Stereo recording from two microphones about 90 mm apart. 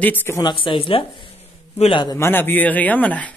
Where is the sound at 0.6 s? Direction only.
85° left.